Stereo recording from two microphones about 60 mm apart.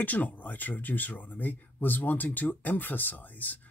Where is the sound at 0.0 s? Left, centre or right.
Left.